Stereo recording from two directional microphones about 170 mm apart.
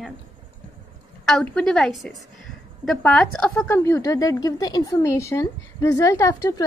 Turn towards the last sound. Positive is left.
turn(degrees=20)  # may be behind; listen again after turning